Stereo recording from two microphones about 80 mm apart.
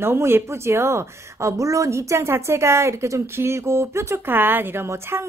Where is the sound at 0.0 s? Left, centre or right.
Right.